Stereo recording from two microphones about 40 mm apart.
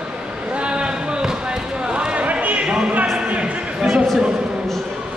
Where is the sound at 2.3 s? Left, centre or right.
Right.